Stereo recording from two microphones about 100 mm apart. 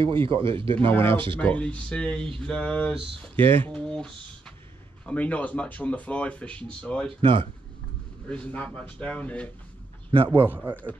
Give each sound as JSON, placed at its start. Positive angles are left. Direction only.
{"t": 0.0, "sound": "speech", "side_deg": -60}
{"t": 0.7, "sound": "speech", "side_deg": 25}
{"t": 7.2, "sound": "speech", "side_deg": -60}
{"t": 8.3, "sound": "speech", "side_deg": 15}
{"t": 10.1, "sound": "speech", "side_deg": -65}
{"t": 10.5, "sound": "speech", "side_deg": -20}